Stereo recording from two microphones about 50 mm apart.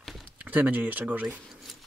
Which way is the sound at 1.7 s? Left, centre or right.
Centre.